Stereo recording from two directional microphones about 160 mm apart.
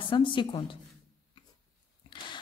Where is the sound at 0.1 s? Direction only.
30° left (ahead or behind).